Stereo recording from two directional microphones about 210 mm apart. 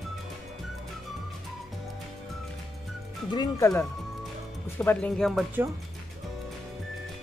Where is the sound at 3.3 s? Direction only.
15° left (ahead or behind).